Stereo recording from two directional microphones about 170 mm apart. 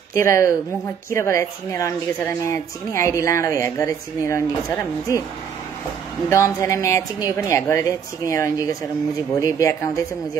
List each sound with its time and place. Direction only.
0.1 s speech: 15° left (ahead or behind)
6.2 s speech: 20° left (ahead or behind)